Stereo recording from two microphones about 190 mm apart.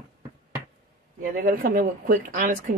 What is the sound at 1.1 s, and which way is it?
A woman's voice, 45° right (ahead or behind).